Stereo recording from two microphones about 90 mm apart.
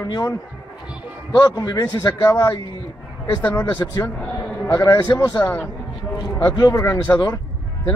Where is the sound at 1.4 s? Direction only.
45° left (ahead or behind).